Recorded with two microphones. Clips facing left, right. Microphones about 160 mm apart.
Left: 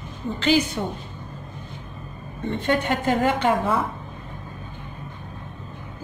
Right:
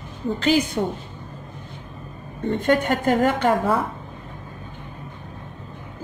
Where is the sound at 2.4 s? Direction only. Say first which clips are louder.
Right 3 dB; 45° right (ahead or behind).